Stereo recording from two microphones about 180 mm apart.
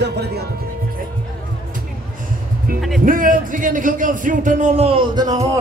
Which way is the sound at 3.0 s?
50° right (ahead or behind).